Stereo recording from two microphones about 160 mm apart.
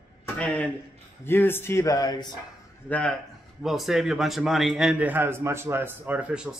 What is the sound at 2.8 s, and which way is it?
Speech, 10° left (ahead or behind).